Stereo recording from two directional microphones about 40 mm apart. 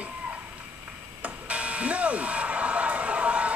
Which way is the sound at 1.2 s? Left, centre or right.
Right.